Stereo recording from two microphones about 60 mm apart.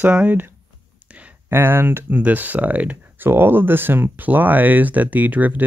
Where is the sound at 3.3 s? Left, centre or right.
Right.